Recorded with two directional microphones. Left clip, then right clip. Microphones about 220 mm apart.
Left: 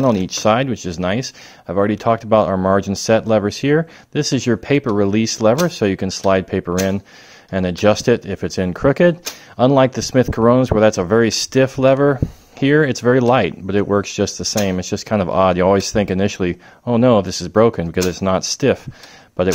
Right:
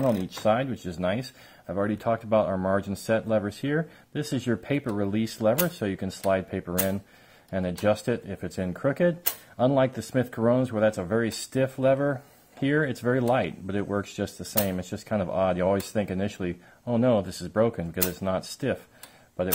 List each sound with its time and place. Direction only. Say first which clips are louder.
0.0 s speech: left 9 dB; 35° left (ahead or behind)